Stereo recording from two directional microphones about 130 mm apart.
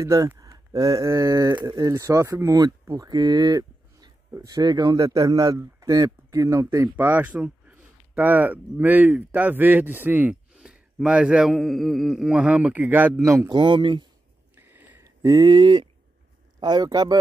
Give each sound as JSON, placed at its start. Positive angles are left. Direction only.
{"t": 0.0, "sound": "speech", "side_deg": -25}
{"t": 13.5, "sound": "speech", "side_deg": -35}
{"t": 14.6, "sound": "a sound", "side_deg": -15}
{"t": 15.2, "sound": "speech", "side_deg": -30}